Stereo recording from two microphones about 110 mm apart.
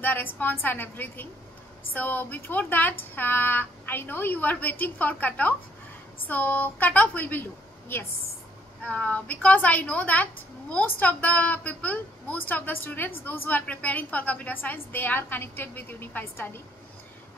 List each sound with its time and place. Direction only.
0.0 s a woman's voice: 15° left (ahead or behind)
8.8 s a woman's voice: 15° left (ahead or behind)